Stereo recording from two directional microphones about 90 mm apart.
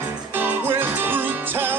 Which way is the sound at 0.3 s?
20° right (ahead or behind).